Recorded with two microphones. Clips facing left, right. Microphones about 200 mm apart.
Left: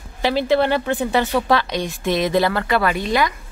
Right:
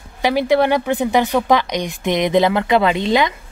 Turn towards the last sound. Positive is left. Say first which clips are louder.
# right 3 dB
turn(degrees=-20)  # may be behind; listen again after turning